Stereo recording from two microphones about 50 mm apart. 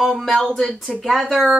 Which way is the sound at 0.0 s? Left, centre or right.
Centre.